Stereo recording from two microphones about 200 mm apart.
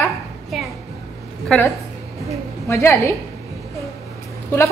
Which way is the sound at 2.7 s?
15° left (ahead or behind).